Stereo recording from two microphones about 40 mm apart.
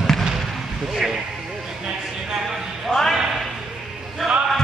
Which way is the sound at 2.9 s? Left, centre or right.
Centre.